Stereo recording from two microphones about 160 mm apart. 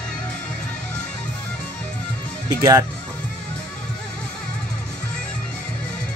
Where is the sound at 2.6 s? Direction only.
20° right (ahead or behind).